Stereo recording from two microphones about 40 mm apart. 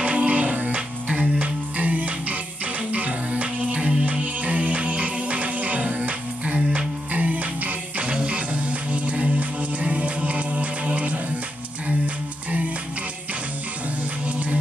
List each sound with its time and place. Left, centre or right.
0.0 s music: right
0.7 s music: right
12.4 s music: right
14.2 s music: right